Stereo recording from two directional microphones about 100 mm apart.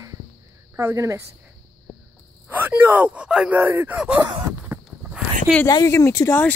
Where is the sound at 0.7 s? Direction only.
30° right (ahead or behind).